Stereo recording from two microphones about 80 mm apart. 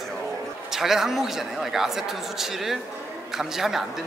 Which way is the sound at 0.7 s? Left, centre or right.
Centre.